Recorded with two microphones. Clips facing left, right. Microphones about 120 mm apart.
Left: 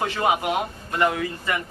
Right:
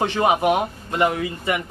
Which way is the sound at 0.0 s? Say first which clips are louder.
Right 4 dB; 25° right (ahead or behind).